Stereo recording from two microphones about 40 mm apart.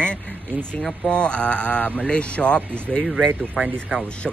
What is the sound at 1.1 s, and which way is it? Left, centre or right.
Speech, left.